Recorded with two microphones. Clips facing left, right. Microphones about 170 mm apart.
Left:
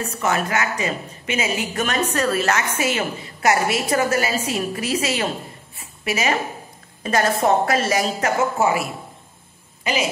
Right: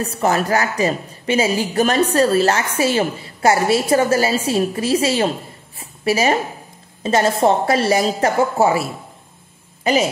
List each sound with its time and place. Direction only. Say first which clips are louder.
0.0 s a woman's voice: right 4 dB; 35° right (ahead or behind)